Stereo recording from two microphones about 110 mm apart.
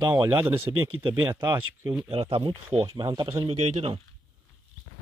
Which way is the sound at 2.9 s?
45° right (ahead or behind).